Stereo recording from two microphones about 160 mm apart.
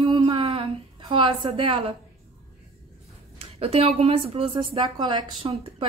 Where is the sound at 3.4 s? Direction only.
40° right (ahead or behind).